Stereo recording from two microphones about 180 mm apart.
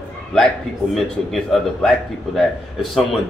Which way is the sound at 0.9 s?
Centre (ahead or behind).